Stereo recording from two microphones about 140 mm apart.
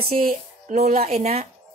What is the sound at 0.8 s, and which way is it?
Speech, 65° right (ahead or behind).